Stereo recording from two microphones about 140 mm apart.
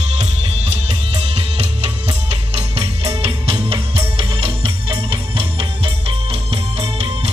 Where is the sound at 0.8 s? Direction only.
45° right (ahead or behind).